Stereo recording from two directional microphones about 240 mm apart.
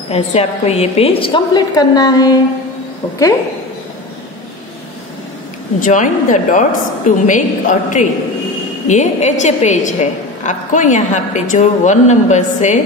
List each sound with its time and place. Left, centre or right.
0.1 s a woman's voice: left
5.8 s a woman's voice: left